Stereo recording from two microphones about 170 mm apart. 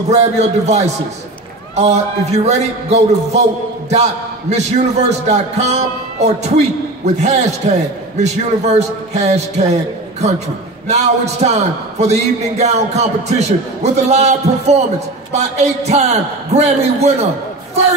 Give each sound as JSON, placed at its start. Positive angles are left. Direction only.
{"t": 0.2, "sound": "a man's voice", "side_deg": -40}
{"t": 10.9, "sound": "speech", "side_deg": -40}